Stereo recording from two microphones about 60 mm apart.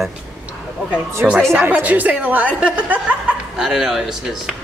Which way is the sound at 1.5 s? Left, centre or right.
Right.